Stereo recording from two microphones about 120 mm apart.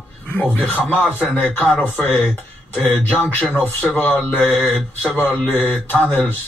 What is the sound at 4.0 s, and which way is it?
Speech, 15° left (ahead or behind).